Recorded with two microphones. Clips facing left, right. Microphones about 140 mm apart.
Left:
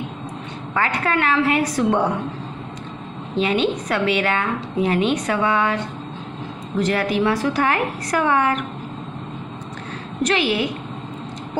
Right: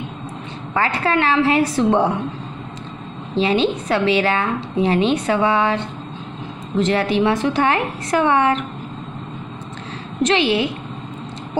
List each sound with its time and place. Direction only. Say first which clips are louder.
0.7 s a woman's voice: right 2 dB; 30° right (ahead or behind)
3.3 s a woman's voice: right 2 dB; 30° right (ahead or behind)
10.2 s a woman's voice: right 3 dB; 25° right (ahead or behind)